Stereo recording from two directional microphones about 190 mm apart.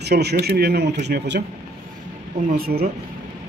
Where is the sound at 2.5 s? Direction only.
50° right (ahead or behind).